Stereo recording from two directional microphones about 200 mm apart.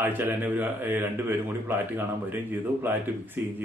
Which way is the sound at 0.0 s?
10° right (ahead or behind).